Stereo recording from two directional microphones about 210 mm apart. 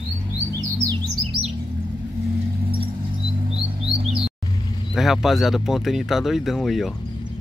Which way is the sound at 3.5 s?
25° right (ahead or behind).